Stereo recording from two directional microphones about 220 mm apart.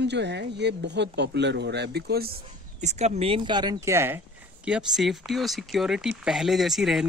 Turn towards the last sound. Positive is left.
turn(degrees=0)  # may be behind; listen again after turning